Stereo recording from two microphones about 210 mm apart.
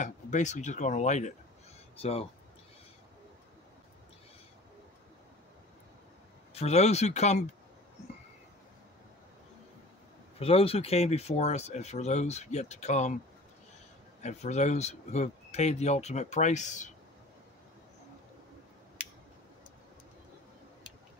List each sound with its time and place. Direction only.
0.0 s speech: 35° left (ahead or behind)
6.5 s speech: 30° left (ahead or behind)
10.4 s speech: 25° left (ahead or behind)
14.2 s speech: 35° left (ahead or behind)